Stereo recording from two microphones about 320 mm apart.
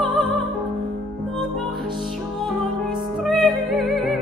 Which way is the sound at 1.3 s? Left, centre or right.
Centre.